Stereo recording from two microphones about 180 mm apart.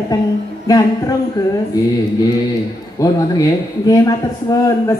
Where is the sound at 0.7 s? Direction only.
20° left (ahead or behind).